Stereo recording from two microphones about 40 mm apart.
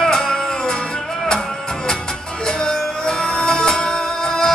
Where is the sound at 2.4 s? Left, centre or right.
Centre.